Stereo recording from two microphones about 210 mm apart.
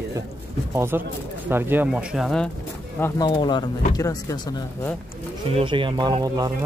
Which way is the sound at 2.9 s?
15° left (ahead or behind).